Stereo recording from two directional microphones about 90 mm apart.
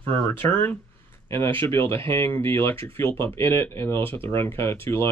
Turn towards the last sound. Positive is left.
turn(degrees=25)  # may be behind; listen again after turning